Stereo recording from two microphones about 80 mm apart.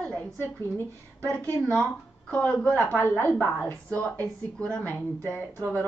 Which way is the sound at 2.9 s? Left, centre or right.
Left.